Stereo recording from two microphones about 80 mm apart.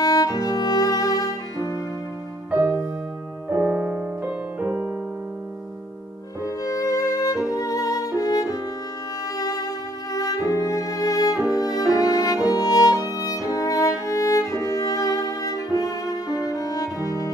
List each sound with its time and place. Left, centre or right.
0.0 s music: left
3.5 s music: centre
6.4 s music: left